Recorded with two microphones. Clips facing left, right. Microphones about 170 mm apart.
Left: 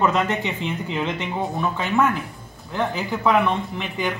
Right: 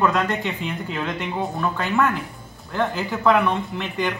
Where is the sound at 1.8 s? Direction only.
Centre (ahead or behind).